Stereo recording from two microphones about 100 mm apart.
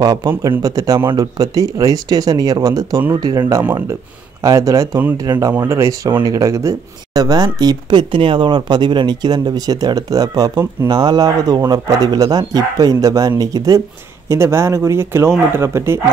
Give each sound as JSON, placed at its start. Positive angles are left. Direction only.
{"t": 0.0, "sound": "speech", "side_deg": -45}
{"t": 5.5, "sound": "speech", "side_deg": -25}